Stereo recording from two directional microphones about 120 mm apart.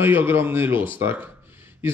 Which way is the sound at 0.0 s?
20° right (ahead or behind).